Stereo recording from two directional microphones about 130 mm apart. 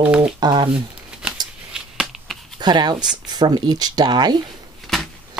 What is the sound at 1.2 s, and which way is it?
Scissors, 5° right (ahead or behind).